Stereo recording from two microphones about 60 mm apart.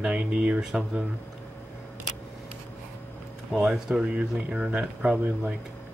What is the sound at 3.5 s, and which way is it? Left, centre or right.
Speech, centre.